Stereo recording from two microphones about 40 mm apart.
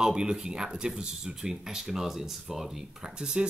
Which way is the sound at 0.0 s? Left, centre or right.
Centre.